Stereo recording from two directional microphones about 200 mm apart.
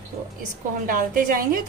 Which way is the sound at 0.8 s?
45° right (ahead or behind).